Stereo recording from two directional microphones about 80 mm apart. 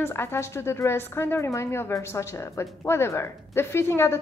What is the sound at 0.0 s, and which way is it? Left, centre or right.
A woman's voice, left.